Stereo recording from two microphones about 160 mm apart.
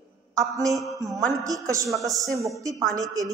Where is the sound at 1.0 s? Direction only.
20° right (ahead or behind).